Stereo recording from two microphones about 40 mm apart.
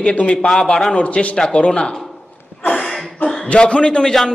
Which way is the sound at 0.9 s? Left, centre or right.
Left.